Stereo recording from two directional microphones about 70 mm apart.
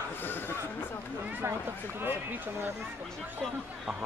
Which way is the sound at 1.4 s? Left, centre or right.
Right.